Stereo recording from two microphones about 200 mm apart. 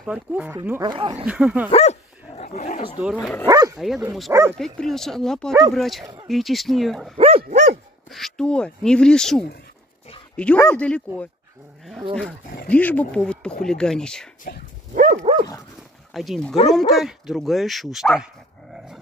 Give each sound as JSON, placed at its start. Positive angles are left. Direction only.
{"t": 0.0, "sound": "speech", "side_deg": -5}
{"t": 1.7, "sound": "dog", "side_deg": 35}
{"t": 3.2, "sound": "speech", "side_deg": 5}
{"t": 3.4, "sound": "speech", "side_deg": -15}
{"t": 3.7, "sound": "speech", "side_deg": 0}
{"t": 4.3, "sound": "speech", "side_deg": -15}
{"t": 4.7, "sound": "speech", "side_deg": 0}
{"t": 7.2, "sound": "dog", "side_deg": -30}
{"t": 8.1, "sound": "speech", "side_deg": 0}
{"t": 15.0, "sound": "dog", "side_deg": -30}
{"t": 16.1, "sound": "speech", "side_deg": 0}